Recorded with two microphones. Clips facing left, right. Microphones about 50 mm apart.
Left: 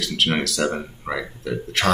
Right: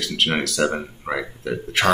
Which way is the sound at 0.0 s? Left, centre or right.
Centre.